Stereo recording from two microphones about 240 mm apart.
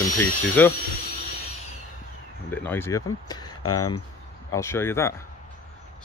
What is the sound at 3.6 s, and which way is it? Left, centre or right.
Speech, left.